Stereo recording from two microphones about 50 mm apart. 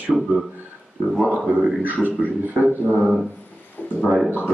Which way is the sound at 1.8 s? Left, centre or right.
Right.